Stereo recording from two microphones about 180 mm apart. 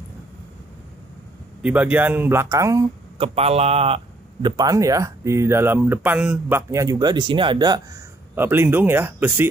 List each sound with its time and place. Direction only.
1.6 s a man's voice: 5° right (ahead or behind)
3.2 s a man's voice: 35° right (ahead or behind); by 6.6 s 5° right (ahead or behind)
6.7 s speech: 20° right (ahead or behind)
8.4 s a man's voice: 10° right (ahead or behind)